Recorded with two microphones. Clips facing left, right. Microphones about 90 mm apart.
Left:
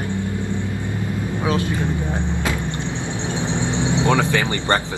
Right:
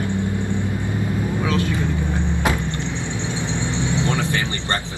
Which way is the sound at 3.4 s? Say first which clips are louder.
Left 3 dB; 20° left (ahead or behind).